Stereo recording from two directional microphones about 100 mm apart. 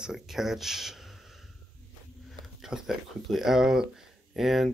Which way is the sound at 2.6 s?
5° right (ahead or behind).